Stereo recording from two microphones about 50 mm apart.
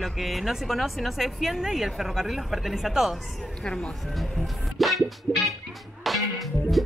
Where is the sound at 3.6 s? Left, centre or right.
Centre.